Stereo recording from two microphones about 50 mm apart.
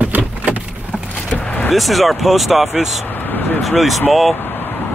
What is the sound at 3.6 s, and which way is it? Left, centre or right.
Speech, centre.